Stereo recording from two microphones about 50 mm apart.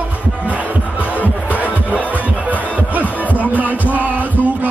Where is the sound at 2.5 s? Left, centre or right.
Right.